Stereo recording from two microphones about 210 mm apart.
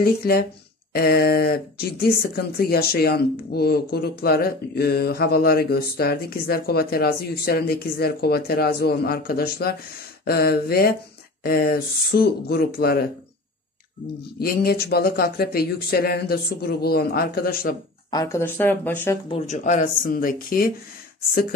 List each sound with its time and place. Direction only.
0.0 s speech: 45° left (ahead or behind)
14.4 s speech: 45° left (ahead or behind)
18.1 s speech: 15° left (ahead or behind)
19.2 s speech: 30° left (ahead or behind)